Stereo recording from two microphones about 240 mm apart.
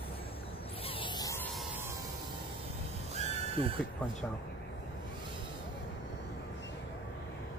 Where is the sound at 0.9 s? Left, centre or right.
Left.